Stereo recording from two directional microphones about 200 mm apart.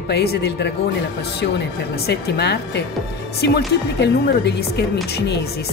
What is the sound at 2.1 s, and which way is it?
A woman's voice, 55° left (ahead or behind).